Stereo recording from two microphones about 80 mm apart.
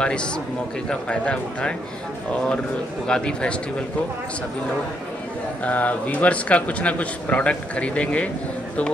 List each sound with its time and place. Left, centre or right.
0.0 s speech: centre
3.1 s speech: centre
5.6 s speech: centre